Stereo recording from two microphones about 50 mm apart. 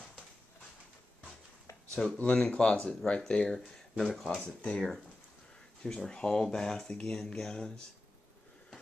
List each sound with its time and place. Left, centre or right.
2.0 s speech: centre